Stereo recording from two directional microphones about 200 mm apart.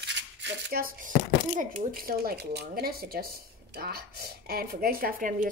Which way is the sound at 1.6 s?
45° right (ahead or behind).